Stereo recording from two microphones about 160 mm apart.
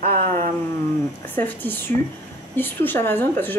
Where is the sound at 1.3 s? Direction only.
10° left (ahead or behind).